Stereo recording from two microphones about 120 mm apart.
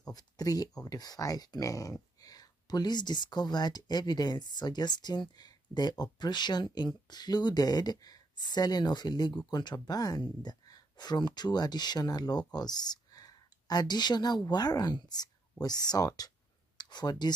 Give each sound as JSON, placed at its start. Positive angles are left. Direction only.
{"t": 0.1, "sound": "speech", "side_deg": 30}